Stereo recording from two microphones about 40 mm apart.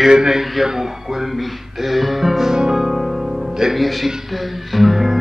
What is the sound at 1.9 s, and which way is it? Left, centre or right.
Music, centre.